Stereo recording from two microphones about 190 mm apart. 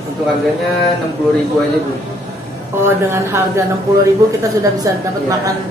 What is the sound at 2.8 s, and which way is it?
Speech, 15° right (ahead or behind).